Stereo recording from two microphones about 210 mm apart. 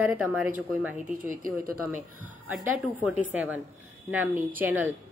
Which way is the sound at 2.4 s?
5° right (ahead or behind).